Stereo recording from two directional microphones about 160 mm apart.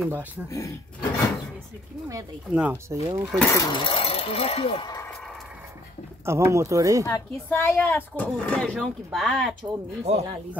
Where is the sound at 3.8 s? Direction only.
35° left (ahead or behind).